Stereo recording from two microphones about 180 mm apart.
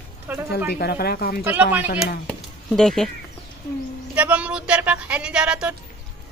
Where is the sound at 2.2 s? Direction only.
5° left (ahead or behind).